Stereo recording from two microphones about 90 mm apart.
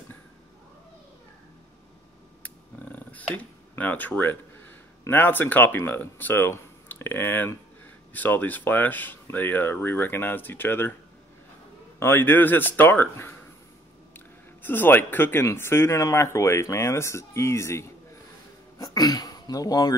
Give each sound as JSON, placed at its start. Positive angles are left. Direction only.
{"t": 2.4, "sound": "a sound", "side_deg": 15}
{"t": 5.1, "sound": "speech", "side_deg": 20}
{"t": 12.0, "sound": "speech", "side_deg": 25}
{"t": 14.1, "sound": "a sound", "side_deg": 20}
{"t": 15.4, "sound": "speech", "side_deg": 25}
{"t": 18.8, "sound": "speech", "side_deg": 45}